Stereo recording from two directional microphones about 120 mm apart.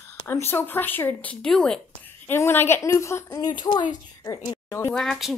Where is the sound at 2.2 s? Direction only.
20° left (ahead or behind).